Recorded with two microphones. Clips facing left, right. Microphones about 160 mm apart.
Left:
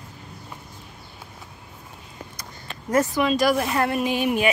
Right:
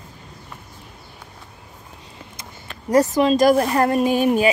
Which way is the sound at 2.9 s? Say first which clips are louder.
Right 5 dB; 35° right (ahead or behind).